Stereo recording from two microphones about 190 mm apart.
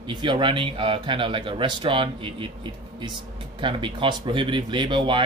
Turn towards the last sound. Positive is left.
turn(degrees=-25)  # may be behind; listen again after turning